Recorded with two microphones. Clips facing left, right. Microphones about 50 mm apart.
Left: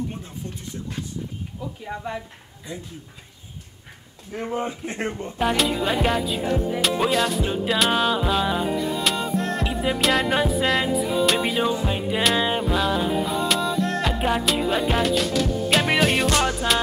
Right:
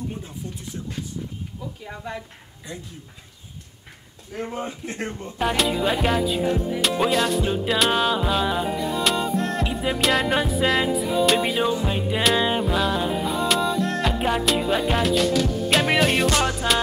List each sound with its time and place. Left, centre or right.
4.3 s speech: left
5.4 s music: centre